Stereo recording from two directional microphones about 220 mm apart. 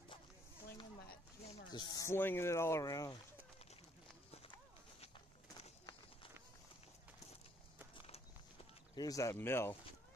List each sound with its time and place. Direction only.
1.5 s speech: 20° left (ahead or behind)
5.0 s bird: 30° left (ahead or behind)
8.9 s speech: 15° left (ahead or behind)